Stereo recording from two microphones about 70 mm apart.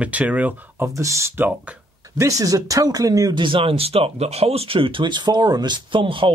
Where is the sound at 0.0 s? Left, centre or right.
Centre.